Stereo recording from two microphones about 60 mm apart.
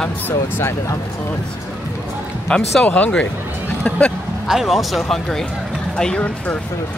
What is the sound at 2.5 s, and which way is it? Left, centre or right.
Speech, centre.